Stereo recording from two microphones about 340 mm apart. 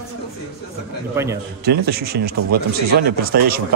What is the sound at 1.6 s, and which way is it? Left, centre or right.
Speech, right.